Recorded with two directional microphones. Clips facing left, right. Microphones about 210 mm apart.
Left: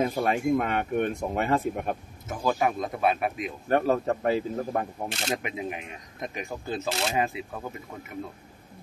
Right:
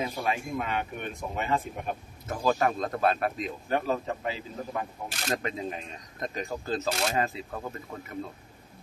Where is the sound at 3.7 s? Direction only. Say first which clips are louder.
Left 6 dB; 55° left (ahead or behind).